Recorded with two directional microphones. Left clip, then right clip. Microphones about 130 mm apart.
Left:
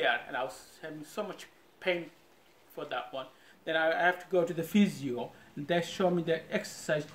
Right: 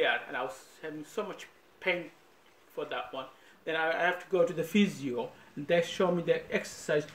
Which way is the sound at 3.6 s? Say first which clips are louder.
Left 2 dB; 35° left (ahead or behind).